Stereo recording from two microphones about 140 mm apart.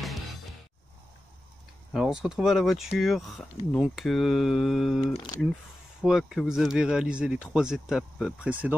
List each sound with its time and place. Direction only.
1.9 s speech: centre (ahead or behind)